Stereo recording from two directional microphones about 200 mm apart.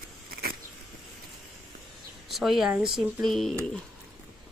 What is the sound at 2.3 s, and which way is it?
Speech, centre (ahead or behind).